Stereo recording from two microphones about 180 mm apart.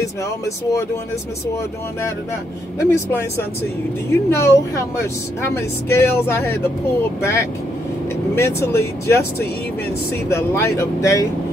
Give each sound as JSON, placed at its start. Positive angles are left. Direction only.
{"t": 2.8, "sound": "speech", "side_deg": 15}
{"t": 8.4, "sound": "speech", "side_deg": 15}
{"t": 10.3, "sound": "speech", "side_deg": 15}